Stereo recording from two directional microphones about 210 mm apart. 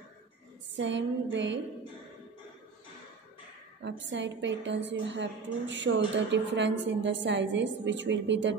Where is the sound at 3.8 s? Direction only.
60° right (ahead or behind).